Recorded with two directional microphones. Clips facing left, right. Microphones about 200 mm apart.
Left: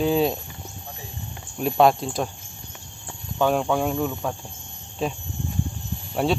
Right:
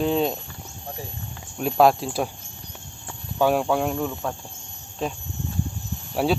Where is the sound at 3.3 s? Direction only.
5° right (ahead or behind).